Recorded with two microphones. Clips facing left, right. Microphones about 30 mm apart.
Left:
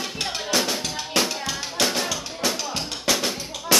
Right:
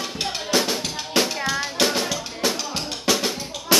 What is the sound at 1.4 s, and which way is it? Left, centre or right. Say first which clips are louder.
Music: right 3 dB; centre.